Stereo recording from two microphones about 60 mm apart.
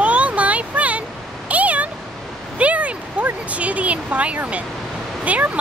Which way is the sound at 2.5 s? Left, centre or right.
Right.